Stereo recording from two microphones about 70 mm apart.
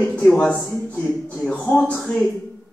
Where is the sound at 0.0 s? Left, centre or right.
Left.